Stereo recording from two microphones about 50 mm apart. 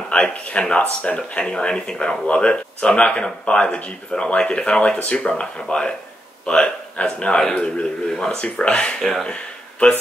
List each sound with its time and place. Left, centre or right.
0.1 s speech: left
9.0 s speech: centre
9.3 s a sound: left